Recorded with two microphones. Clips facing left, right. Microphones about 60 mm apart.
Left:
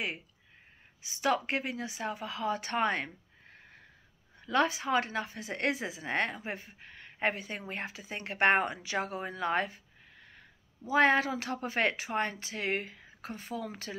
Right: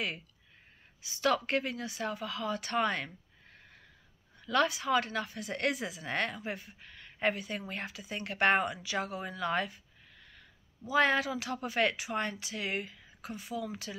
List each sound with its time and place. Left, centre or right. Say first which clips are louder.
1.0 s a woman's voice: even; left
4.5 s a woman's voice: even; left
10.9 s a woman's voice: left 2 dB; left